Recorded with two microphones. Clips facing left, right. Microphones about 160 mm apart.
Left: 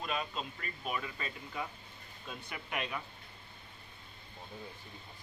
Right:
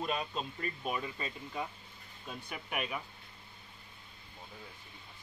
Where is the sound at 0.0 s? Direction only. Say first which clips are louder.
Right 2 dB; 30° right (ahead or behind).